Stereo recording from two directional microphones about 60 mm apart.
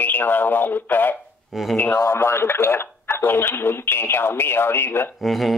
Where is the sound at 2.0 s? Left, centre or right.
Left.